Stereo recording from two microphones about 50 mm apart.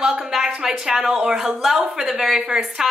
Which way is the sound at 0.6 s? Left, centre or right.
Centre.